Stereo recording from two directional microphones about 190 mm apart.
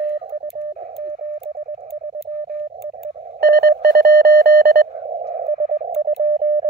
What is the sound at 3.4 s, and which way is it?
Telephone dialing, 55° right (ahead or behind).